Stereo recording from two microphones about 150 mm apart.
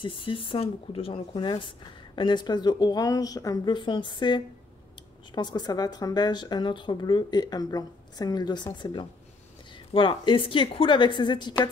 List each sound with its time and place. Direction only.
0.0 s a woman's voice: 35° left (ahead or behind)